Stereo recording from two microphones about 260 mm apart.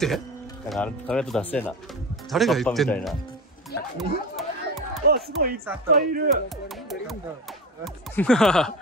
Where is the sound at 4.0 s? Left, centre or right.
Centre.